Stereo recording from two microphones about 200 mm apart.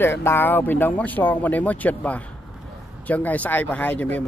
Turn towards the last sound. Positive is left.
turn(degrees=10)  # may be behind; listen again after turning